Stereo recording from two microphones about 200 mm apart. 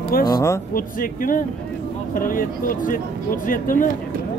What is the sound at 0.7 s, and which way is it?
Speech, 45° left (ahead or behind).